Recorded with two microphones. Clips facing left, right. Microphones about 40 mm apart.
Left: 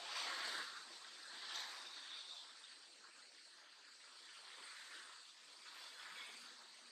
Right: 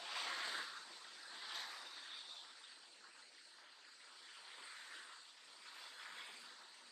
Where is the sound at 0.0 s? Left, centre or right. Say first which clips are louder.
Right 1 dB; centre.